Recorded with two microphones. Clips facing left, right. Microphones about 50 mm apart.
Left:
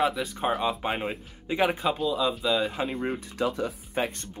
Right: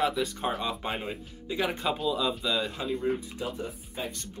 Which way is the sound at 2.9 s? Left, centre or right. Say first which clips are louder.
Right 1 dB; left.